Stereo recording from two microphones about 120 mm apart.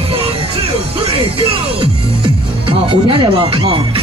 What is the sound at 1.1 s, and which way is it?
Music, 50° right (ahead or behind).